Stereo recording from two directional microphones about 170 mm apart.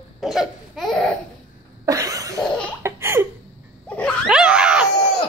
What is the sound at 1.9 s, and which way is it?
Cough, 20° right (ahead or behind).